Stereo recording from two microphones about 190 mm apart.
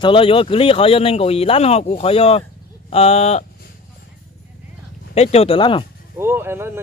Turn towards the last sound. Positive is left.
turn(degrees=-10)  # may be behind; listen again after turning